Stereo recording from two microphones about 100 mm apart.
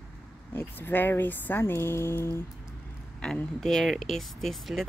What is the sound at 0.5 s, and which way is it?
Speech, 20° left (ahead or behind).